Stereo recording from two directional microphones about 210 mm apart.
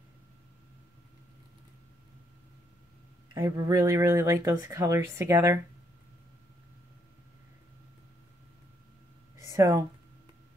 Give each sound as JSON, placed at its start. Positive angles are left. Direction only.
{"t": 3.3, "sound": "speech", "side_deg": -15}
{"t": 9.5, "sound": "speech", "side_deg": -15}